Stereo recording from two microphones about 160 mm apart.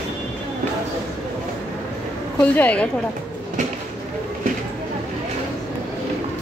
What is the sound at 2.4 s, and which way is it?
Speech, 10° left (ahead or behind).